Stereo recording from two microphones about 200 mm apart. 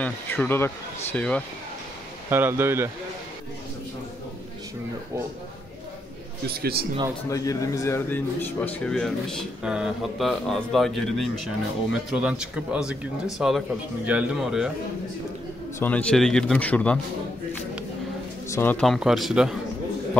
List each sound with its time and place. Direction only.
0.0 s a man's voice: 10° left (ahead or behind)
2.3 s speech: 10° right (ahead or behind)
6.5 s a man's voice: 50° right (ahead or behind)
7.2 s speech: 15° left (ahead or behind); by 14.7 s 5° right (ahead or behind)
15.8 s a man's voice: 5° left (ahead or behind)
18.5 s speech: 10° left (ahead or behind)